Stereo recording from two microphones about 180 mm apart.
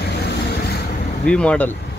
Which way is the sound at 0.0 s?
65° left (ahead or behind).